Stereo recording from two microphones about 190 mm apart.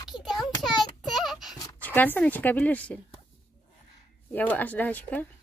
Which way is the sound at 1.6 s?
15° left (ahead or behind).